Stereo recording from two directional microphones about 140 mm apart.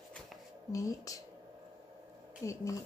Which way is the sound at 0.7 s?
25° left (ahead or behind).